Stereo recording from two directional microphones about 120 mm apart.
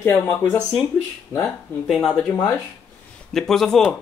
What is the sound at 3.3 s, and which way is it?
Speech, 5° left (ahead or behind).